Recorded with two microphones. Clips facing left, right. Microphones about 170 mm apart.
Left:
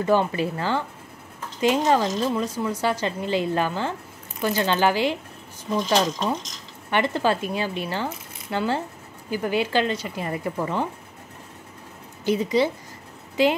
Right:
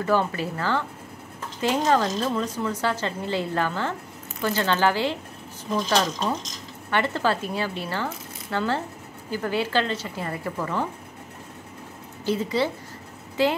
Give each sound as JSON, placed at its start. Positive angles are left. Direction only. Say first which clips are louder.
{"t": 0.0, "sound": "a woman's voice", "louder": "left 2 dB", "side_deg": 20}
{"t": 6.9, "sound": "speech", "louder": "left 2 dB", "side_deg": 15}
{"t": 12.3, "sound": "speech", "louder": "left 3 dB", "side_deg": 15}